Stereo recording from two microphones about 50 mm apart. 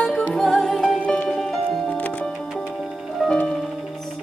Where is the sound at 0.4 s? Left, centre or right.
Centre.